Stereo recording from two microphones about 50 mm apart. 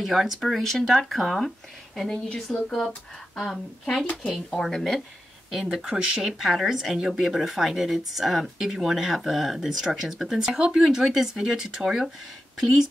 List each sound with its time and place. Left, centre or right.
0.0 s speech: centre
0.7 s speech: centre
2.2 s speech: left
3.3 s a woman's voice: centre
5.8 s speech: right
6.2 s speech: centre